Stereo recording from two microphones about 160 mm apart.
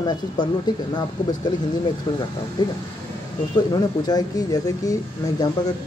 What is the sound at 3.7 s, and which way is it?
Speech, 25° left (ahead or behind).